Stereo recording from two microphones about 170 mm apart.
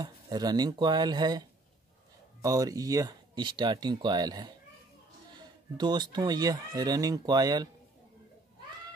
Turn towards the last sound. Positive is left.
turn(degrees=-25)  # may be behind; listen again after turning